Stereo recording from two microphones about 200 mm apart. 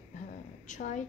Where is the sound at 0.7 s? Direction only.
40° left (ahead or behind).